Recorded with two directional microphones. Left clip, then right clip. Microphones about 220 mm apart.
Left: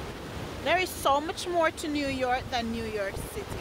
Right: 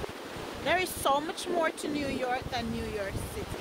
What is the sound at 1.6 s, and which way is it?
Speech, 20° left (ahead or behind).